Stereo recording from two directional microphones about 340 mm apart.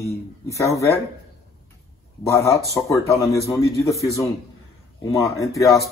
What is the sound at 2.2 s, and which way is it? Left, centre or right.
Speech, centre.